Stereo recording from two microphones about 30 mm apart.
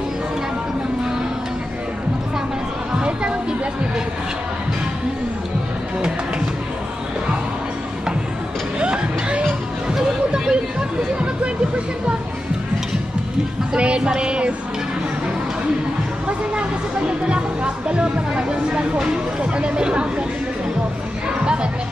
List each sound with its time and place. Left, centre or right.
3.0 s music: right
8.7 s a sound: right
10.3 s hubbub: right
13.7 s speech: right
17.8 s speech: right